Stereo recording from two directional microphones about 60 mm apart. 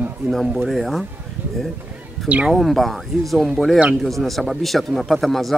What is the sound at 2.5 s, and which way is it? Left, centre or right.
A man's voice, centre.